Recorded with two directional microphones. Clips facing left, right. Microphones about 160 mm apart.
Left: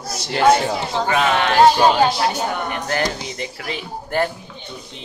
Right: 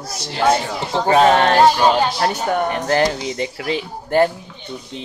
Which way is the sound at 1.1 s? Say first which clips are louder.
Right 7 dB; 40° right (ahead or behind).